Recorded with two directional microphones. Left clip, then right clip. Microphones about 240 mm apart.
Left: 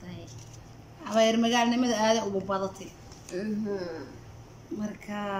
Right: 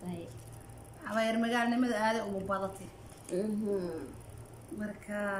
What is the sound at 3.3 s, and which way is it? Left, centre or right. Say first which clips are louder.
Speech: right 1 dB; centre.